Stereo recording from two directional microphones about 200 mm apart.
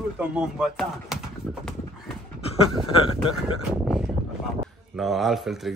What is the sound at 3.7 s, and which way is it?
A man's voice, 5° right (ahead or behind).